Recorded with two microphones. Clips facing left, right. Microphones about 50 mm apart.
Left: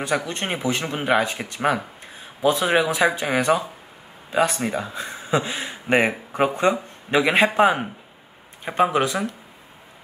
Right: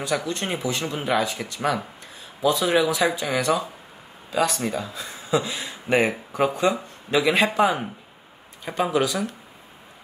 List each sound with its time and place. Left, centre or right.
0.3 s a man's voice: left